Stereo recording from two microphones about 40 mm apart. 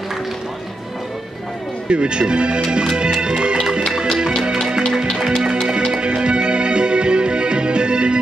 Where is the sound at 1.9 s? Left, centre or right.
Right.